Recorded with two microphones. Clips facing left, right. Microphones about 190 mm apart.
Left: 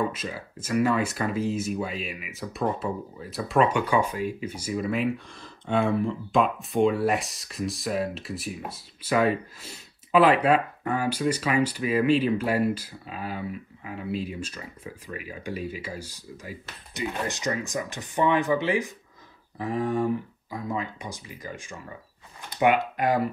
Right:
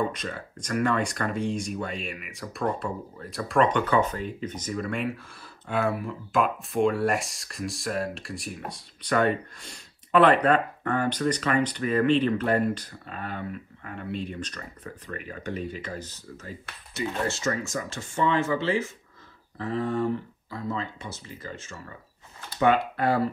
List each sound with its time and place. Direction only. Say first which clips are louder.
0.1 s speech: even; 5° left (ahead or behind)